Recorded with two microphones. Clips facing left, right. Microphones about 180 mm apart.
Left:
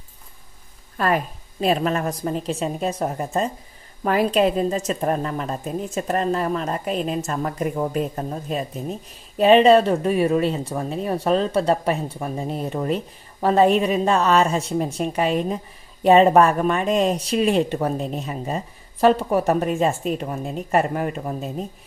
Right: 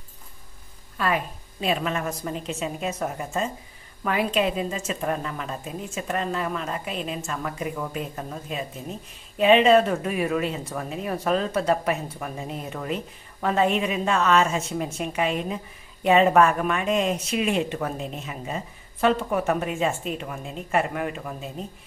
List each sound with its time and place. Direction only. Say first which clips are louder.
0.9 s speech: left 4 dB; 45° left (ahead or behind)